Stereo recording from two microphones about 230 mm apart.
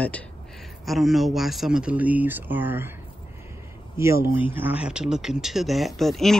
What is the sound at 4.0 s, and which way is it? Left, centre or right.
Speech, centre.